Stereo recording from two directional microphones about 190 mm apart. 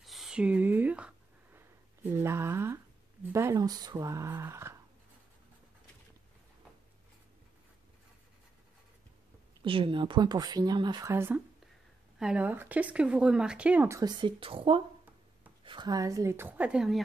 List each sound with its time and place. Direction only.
0.0 s a sound: centre (ahead or behind)
2.0 s speech: 15° right (ahead or behind)
9.6 s speech: 25° right (ahead or behind); by 17.0 s 5° right (ahead or behind)